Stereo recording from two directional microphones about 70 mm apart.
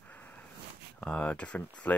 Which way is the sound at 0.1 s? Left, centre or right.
Left.